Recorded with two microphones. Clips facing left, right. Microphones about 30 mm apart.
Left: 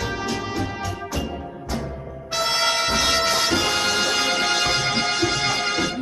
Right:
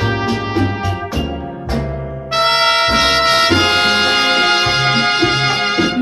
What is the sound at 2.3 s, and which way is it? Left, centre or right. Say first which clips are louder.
Brass instrument: right 9 dB; right.